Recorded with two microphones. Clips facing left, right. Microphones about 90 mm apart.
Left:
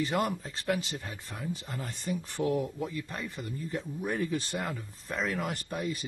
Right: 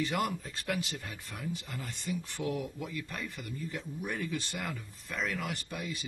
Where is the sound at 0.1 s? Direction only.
30° left (ahead or behind).